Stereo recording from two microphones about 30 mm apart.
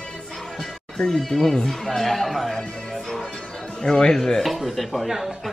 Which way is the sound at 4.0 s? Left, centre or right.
Left.